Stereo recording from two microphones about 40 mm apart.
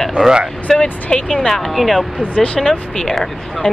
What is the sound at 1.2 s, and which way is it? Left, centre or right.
Speech, centre.